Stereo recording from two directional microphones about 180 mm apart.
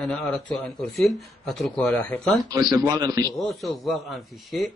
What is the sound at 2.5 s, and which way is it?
Speech, 20° right (ahead or behind).